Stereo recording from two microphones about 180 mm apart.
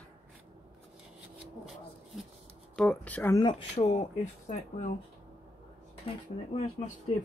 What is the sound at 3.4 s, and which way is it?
Speech, 30° left (ahead or behind).